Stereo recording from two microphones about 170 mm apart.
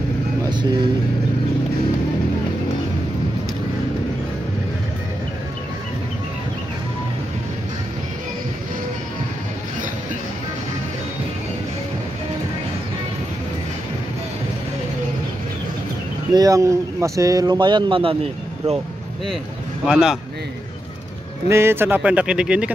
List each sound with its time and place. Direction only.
0.5 s vehicle: 25° right (ahead or behind)
16.3 s speech: 20° right (ahead or behind)
19.9 s a man's voice: 5° right (ahead or behind)
21.5 s speech: 15° right (ahead or behind)